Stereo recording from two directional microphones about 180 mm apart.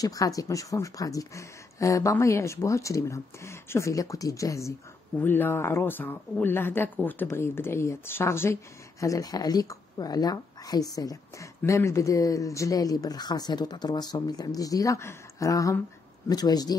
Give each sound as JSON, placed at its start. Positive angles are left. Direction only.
{"t": 0.0, "sound": "speech", "side_deg": 20}